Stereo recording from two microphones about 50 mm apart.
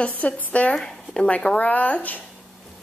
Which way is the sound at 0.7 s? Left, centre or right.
Centre.